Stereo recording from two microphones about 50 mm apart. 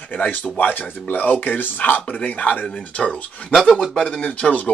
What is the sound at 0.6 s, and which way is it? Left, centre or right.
Speech, left.